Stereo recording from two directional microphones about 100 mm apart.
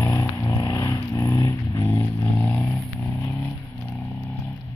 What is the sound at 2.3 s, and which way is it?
Vehicle, 15° left (ahead or behind).